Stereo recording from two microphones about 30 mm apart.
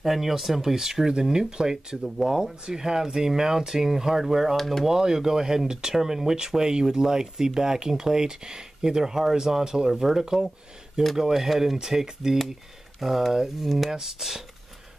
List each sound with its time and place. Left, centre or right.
0.0 s speech: centre
11.3 s speech: centre